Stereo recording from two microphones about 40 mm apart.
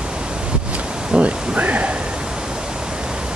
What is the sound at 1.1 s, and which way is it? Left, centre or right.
Speech, right.